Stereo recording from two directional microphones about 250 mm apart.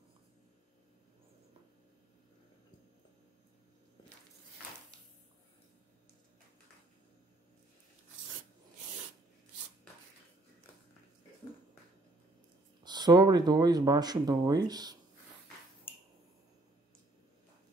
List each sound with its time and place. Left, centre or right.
12.8 s speech: centre